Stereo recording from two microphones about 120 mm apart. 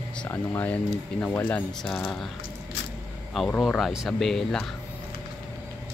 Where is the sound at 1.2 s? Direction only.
10° left (ahead or behind).